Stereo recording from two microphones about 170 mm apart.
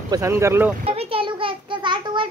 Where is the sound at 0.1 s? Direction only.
15° right (ahead or behind).